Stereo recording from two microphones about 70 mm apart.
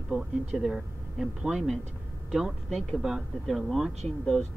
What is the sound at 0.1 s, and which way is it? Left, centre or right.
A man's voice, centre.